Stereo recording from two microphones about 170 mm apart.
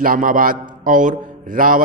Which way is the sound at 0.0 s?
55° right (ahead or behind).